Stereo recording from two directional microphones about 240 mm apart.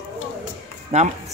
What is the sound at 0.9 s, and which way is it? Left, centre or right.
Speech, right.